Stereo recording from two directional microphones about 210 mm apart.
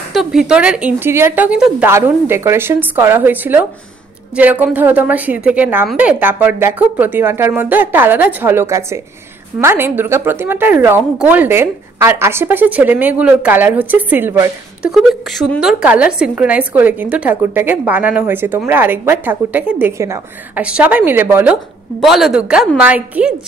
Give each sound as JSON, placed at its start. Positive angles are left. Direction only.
{"t": 0.1, "sound": "a woman's voice", "side_deg": 0}
{"t": 14.8, "sound": "a woman's voice", "side_deg": 0}